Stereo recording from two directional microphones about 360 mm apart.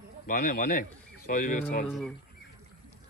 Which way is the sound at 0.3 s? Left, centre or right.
Left.